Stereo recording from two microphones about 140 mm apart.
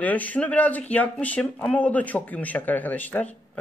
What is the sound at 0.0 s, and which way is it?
Speech, 10° left (ahead or behind).